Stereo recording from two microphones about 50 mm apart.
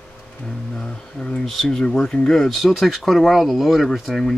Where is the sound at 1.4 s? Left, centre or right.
Centre.